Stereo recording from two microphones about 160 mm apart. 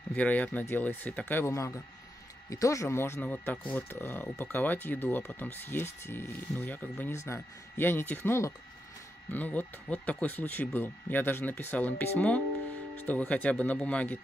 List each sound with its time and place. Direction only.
0.1 s speech: 10° left (ahead or behind)